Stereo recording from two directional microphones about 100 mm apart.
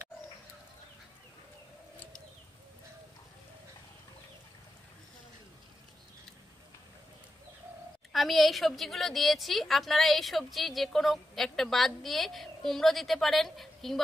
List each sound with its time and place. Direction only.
8.1 s a woman's voice: centre (ahead or behind)